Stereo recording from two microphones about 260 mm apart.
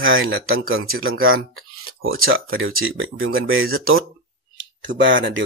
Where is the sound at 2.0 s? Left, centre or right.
Right.